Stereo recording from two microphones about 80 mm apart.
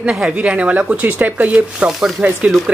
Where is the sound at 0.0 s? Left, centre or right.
Centre.